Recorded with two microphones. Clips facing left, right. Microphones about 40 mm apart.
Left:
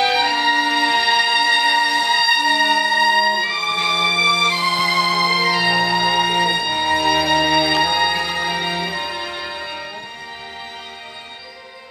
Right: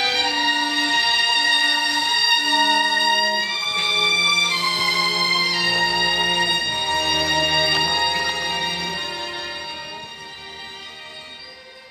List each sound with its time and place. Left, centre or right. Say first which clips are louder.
0.0 s music: left 4 dB; centre
7.9 s music: left 3 dB; left